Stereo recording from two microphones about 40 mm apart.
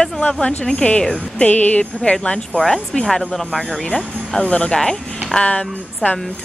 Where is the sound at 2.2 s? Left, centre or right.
Left.